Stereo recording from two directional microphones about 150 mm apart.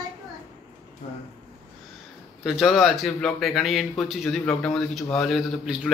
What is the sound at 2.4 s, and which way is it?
A man's voice, centre (ahead or behind).